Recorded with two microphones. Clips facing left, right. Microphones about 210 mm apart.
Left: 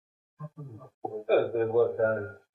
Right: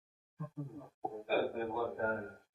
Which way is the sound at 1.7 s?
55° left (ahead or behind).